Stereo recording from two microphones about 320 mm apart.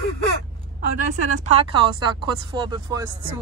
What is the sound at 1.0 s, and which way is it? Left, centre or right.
Speech, right.